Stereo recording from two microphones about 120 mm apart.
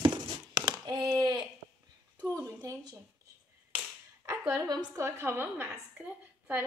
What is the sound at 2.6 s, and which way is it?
Speech, 30° right (ahead or behind).